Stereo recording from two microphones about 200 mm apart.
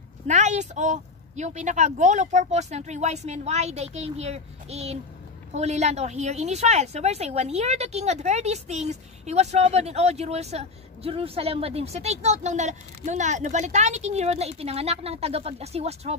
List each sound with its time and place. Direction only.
0.3 s a woman's voice: 35° right (ahead or behind)